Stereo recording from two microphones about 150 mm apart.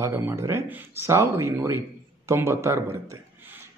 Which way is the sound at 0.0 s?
15° right (ahead or behind).